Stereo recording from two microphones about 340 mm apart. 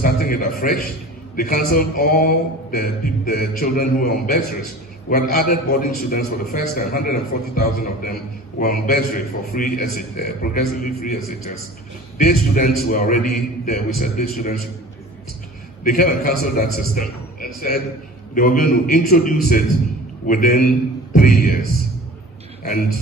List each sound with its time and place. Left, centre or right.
0.0 s speech: left
12.2 s speech: left
15.8 s a man's voice: left
21.2 s music: left
22.6 s speech: left